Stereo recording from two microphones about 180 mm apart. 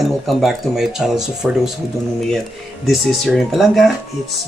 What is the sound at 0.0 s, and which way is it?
Speech, centre (ahead or behind).